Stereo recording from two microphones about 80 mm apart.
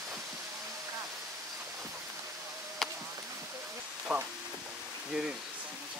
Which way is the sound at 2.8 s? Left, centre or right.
Centre.